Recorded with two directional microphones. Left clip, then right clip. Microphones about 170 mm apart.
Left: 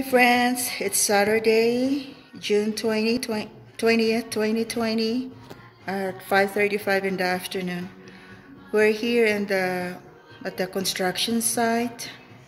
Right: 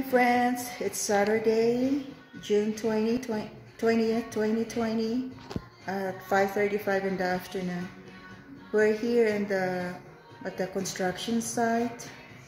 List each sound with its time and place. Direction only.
0.1 s speech: 15° left (ahead or behind)
1.4 s speech: 40° left (ahead or behind)
2.5 s a woman's voice: 20° left (ahead or behind)